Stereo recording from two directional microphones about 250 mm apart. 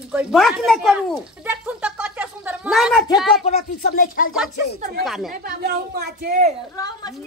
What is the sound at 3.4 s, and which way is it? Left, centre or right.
Speech, left.